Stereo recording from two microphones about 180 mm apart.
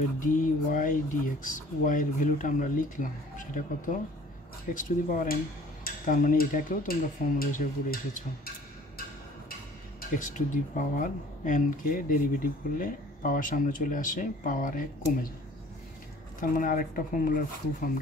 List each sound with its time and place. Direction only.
0.2 s speech: 50° left (ahead or behind)
9.9 s speech: 50° left (ahead or behind)
16.3 s speech: 50° left (ahead or behind)